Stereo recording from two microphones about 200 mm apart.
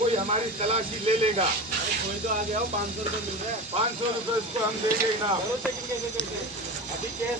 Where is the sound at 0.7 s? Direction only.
30° right (ahead or behind).